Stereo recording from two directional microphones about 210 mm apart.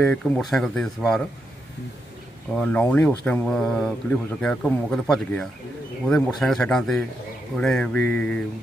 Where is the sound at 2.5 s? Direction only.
5° left (ahead or behind).